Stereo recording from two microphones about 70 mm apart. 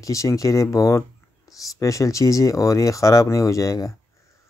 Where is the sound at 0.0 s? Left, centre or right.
Left.